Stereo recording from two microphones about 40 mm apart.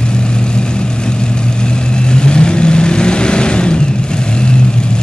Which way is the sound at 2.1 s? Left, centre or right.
Left.